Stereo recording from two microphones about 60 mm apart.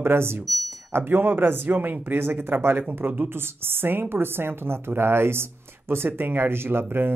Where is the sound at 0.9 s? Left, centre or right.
Right.